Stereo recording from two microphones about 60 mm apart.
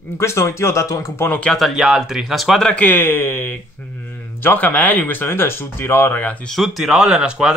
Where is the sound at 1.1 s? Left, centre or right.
Left.